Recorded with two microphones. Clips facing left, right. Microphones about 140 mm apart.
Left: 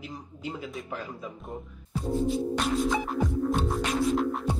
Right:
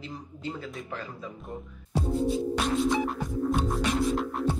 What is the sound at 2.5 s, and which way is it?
Music, centre (ahead or behind).